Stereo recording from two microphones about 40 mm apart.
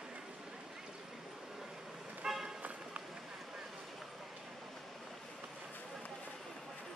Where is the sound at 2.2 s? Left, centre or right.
Centre.